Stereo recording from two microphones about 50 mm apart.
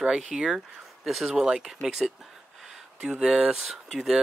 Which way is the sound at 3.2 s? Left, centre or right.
Centre.